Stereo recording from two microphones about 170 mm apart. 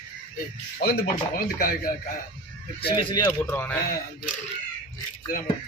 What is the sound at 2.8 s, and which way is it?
Speech, 30° left (ahead or behind).